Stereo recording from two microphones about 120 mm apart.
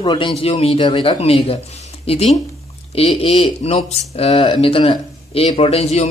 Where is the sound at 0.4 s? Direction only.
55° left (ahead or behind).